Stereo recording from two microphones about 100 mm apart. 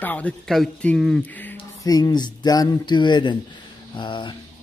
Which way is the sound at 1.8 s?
40° left (ahead or behind).